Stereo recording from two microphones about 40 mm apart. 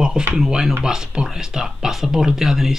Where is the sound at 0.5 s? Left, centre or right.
Centre.